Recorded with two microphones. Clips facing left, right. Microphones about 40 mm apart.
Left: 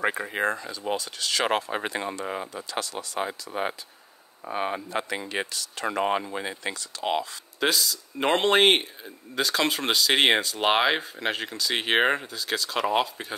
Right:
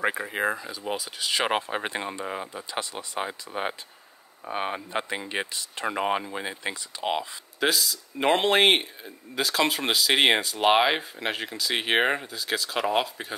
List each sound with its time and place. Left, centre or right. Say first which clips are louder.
0.0 s speech: even; centre
2.2 s speech: left 1 dB; centre
2.5 s speech: left 1 dB; centre
3.2 s speech: left 1 dB; centre